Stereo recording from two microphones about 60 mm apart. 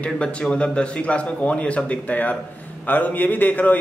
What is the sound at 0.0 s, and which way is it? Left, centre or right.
A man's voice, centre.